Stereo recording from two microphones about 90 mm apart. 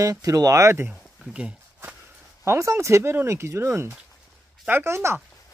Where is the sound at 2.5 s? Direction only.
30° right (ahead or behind).